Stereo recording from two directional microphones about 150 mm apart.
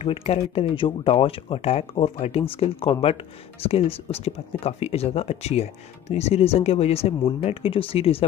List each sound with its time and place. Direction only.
0.0 s speech: 45° left (ahead or behind)